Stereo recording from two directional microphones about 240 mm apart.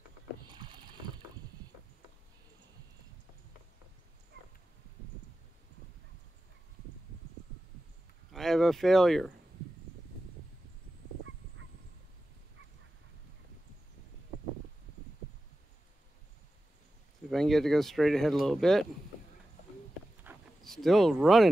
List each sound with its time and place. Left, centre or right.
0.4 s boat: centre
4.3 s dog: right
8.3 s speech: centre
17.3 s speech: centre
20.2 s a sound: centre